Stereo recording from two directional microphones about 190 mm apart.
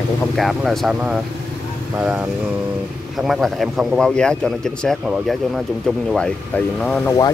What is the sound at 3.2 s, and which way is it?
Speech, centre (ahead or behind).